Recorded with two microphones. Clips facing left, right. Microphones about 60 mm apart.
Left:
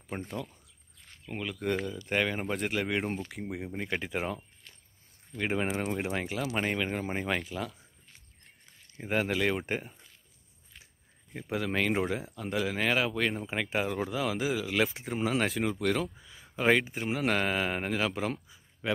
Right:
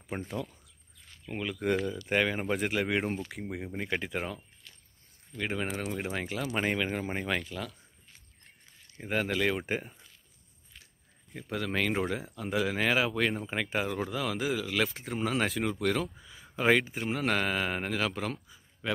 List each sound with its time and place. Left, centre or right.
0.0 s speech: centre
4.6 s vehicle: left
5.3 s speech: centre
8.9 s speech: centre
11.3 s speech: centre